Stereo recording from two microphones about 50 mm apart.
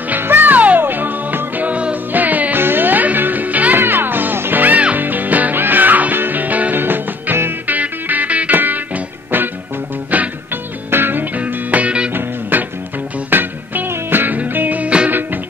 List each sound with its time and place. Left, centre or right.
0.2 s music: right
10.5 s music: right
11.3 s music: right
12.1 s music: right